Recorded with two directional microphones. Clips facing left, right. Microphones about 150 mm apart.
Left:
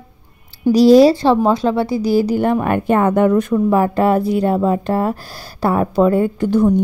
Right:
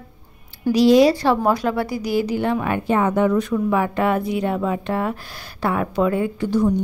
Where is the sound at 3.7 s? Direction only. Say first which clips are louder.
Left 5 dB; 40° left (ahead or behind).